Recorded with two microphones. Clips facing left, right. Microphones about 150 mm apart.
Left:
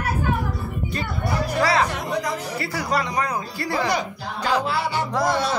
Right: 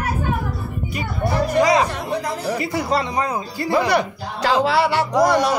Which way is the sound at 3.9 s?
65° right (ahead or behind).